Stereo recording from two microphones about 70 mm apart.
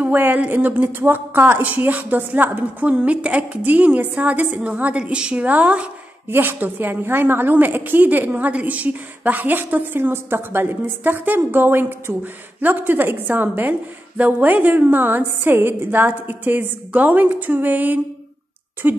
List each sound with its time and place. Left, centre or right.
0.0 s a woman's voice: right
6.2 s a woman's voice: right
12.1 s a woman's voice: right
12.5 s a woman's voice: right